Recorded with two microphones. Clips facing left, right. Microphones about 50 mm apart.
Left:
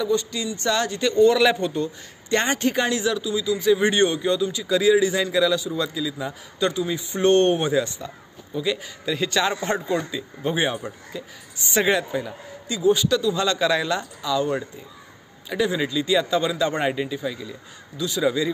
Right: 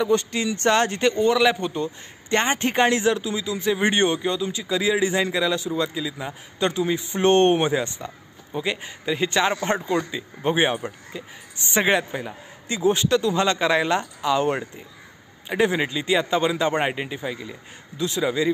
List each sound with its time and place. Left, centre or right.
0.0 s speech: right
1.3 s a man's voice: centre
1.7 s a man's voice: right
2.6 s a man's voice: right
12.6 s a man's voice: right
18.2 s a man's voice: right